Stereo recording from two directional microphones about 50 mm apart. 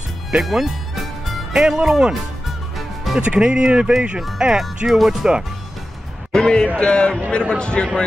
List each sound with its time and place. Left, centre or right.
0.4 s music: centre
1.5 s speech: centre
3.2 s speech: right; by 5.3 s centre
6.3 s a man's voice: centre